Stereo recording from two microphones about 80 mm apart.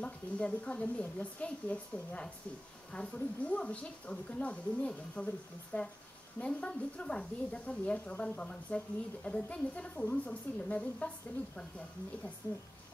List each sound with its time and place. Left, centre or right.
0.0 s a woman's voice: centre